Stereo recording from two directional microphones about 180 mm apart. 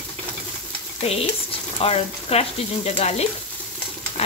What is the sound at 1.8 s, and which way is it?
Stir, 35° left (ahead or behind).